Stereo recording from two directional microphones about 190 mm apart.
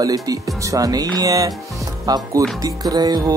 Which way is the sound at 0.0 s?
20° right (ahead or behind).